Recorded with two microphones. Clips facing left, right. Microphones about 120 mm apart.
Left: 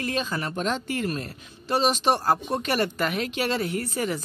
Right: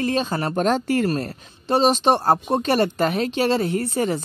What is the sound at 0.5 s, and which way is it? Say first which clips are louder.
Speech: right 10 dB; 45° right (ahead or behind).